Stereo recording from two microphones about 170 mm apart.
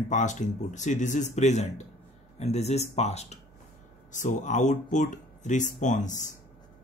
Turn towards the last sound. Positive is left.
turn(degrees=45)  # may be behind; listen again after turning